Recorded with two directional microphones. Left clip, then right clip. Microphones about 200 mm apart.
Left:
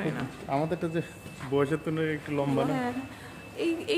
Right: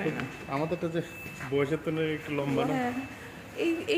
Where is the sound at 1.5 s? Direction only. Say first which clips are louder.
Left 1 dB; 35° left (ahead or behind).